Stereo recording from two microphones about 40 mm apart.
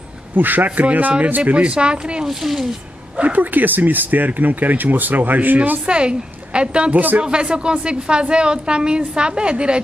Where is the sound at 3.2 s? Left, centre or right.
Right.